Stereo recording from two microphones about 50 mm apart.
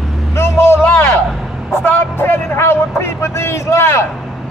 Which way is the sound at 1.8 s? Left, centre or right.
Left.